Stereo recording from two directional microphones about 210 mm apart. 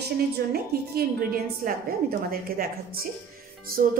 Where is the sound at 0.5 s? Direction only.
45° right (ahead or behind).